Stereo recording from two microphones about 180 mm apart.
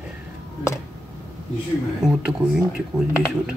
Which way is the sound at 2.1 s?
5° right (ahead or behind).